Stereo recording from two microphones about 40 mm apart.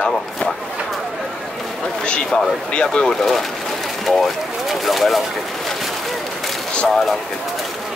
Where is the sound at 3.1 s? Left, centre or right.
Centre.